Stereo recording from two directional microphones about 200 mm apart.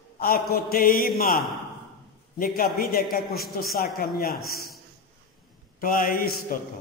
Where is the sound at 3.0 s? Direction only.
Centre (ahead or behind).